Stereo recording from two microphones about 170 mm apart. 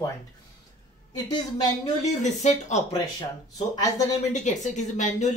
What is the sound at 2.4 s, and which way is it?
Speech, 40° left (ahead or behind).